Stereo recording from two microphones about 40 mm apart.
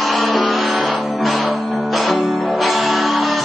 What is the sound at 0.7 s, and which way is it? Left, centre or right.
Music, right.